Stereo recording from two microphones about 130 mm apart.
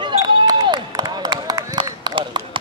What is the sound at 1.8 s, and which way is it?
Run, 35° right (ahead or behind).